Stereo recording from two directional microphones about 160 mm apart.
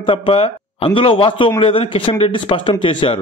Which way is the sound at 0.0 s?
35° left (ahead or behind).